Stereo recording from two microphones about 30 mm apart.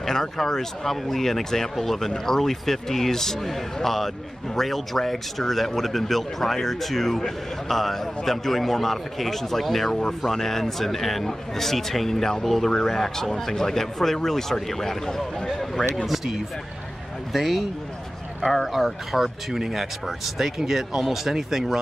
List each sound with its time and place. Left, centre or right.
0.0 s speech: centre
17.3 s speech: centre